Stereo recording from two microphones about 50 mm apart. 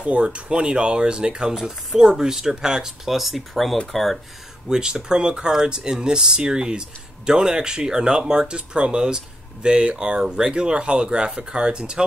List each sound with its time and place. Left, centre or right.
0.0 s speech: right; by 4.2 s centre
4.6 s speech: centre